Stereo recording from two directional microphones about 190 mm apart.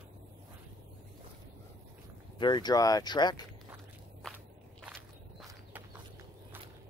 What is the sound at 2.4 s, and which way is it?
Speech, 20° left (ahead or behind).